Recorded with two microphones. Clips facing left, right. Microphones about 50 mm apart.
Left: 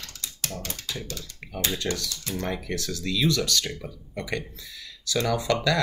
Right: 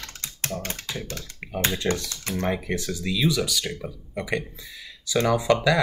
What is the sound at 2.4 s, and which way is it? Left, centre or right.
Speech, right.